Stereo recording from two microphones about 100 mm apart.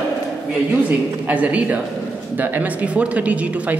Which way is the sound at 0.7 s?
15° right (ahead or behind).